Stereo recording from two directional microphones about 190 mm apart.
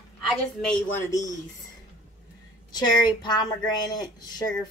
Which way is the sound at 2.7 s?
20° left (ahead or behind).